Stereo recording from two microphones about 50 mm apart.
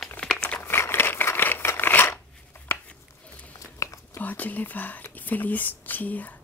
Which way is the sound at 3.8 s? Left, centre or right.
Left.